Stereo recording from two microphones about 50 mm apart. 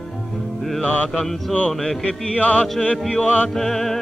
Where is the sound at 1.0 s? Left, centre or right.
Centre.